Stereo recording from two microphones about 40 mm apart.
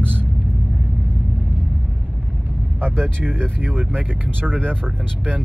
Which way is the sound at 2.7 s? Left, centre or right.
Right.